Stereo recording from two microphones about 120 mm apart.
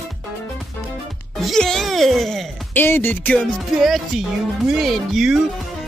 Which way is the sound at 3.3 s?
Centre (ahead or behind).